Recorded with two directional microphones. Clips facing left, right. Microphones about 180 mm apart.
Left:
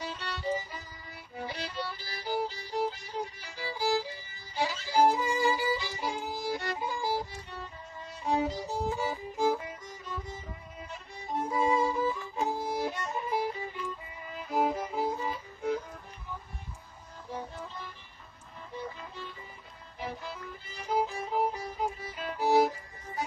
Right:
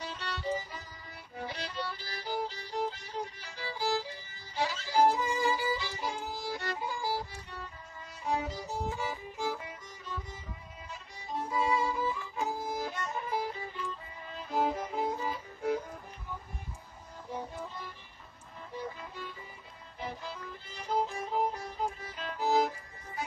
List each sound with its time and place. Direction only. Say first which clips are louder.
0.0 s music: left 2 dB; 5° left (ahead or behind)
1.3 s violin: left 2 dB; 5° left (ahead or behind); by 9.8 s 45° left (ahead or behind)
10.9 s music: left 3 dB; 55° left (ahead or behind)
11.5 s music: left 3 dB; 25° left (ahead or behind); by 15.8 s 5° right (ahead or behind)
20.0 s violin: left 1 dB; centre (ahead or behind)